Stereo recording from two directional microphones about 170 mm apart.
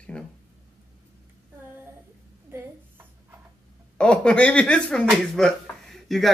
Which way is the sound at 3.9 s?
5° left (ahead or behind).